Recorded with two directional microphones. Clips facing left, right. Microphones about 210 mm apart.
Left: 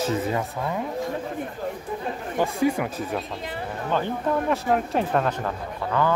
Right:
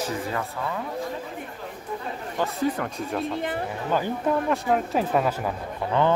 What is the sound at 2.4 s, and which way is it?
Speech, 10° left (ahead or behind).